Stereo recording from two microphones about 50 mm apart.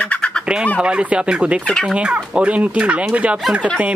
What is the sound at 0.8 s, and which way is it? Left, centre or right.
Fowl, right.